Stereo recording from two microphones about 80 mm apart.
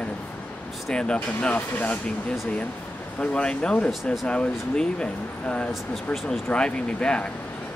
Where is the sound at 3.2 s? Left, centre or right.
Centre.